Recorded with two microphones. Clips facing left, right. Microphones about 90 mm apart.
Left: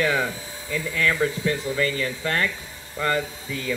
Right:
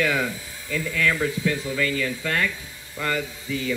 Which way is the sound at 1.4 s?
35° left (ahead or behind).